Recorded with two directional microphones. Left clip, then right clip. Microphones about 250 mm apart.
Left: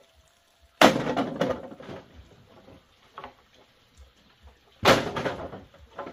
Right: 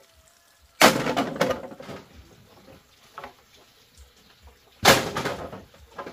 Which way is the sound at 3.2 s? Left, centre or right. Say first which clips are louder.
Right 2 dB; right.